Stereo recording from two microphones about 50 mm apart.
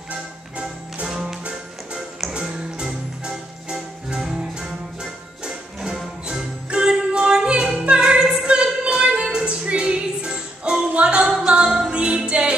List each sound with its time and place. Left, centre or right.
0.1 s music: right
1.0 s music: centre
2.3 s music: centre